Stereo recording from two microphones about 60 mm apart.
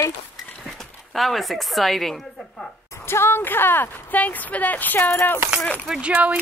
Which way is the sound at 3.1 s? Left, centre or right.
Left.